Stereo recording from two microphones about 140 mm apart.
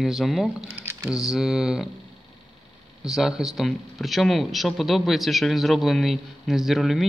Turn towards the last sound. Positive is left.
turn(degrees=0)  # may be behind; listen again after turning